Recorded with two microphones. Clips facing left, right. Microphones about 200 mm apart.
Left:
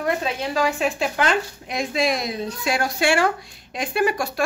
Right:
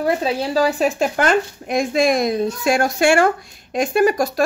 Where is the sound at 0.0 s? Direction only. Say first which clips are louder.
Right 5 dB; 35° right (ahead or behind).